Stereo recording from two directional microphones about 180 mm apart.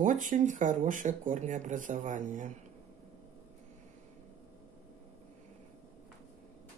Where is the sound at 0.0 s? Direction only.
45° right (ahead or behind).